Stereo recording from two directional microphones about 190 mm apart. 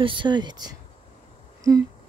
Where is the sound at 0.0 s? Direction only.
25° right (ahead or behind).